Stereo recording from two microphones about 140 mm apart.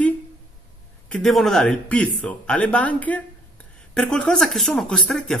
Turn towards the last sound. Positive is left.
turn(degrees=0)  # may be behind; listen again after turning